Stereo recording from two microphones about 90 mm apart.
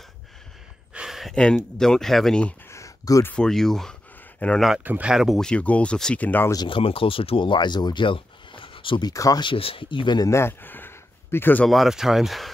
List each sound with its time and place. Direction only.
0.9 s a sound: 5° right (ahead or behind)
1.3 s speech: 10° left (ahead or behind)
2.7 s a sound: 35° left (ahead or behind)
3.3 s speech: 5° left (ahead or behind)
4.8 s speech: 20° right (ahead or behind)
5.1 s speech: 5° right (ahead or behind)
5.4 s speech: 10° left (ahead or behind)
6.7 s speech: 85° left
9.0 s speech: 40° left (ahead or behind)
9.4 s speech: 80° left; by 10.2 s 60° left (ahead or behind)
10.2 s a sound: 30° left (ahead or behind)
11.6 s speech: centre (ahead or behind)